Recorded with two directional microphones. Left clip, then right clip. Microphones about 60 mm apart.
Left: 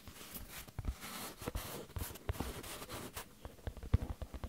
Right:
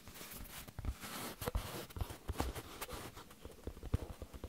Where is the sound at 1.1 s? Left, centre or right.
Right.